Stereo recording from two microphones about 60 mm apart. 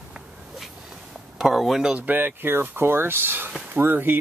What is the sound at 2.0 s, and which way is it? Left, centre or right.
Speech, right.